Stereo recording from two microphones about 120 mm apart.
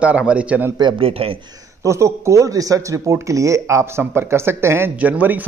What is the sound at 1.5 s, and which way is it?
A man's voice, 25° right (ahead or behind).